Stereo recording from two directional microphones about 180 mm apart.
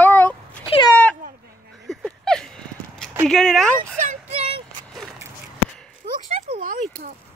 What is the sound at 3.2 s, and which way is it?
Speech, 5° left (ahead or behind).